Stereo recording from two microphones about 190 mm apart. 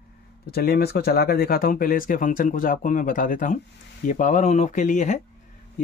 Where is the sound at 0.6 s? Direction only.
60° left (ahead or behind).